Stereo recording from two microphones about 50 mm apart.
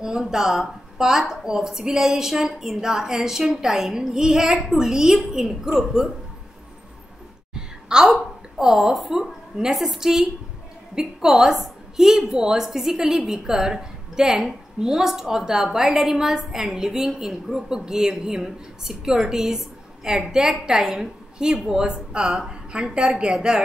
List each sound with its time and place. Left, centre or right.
0.0 s a woman's voice: centre
7.5 s a sound: centre
8.5 s a woman's voice: centre